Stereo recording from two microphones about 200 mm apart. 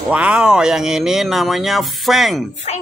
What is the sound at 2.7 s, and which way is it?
Speech, 35° left (ahead or behind).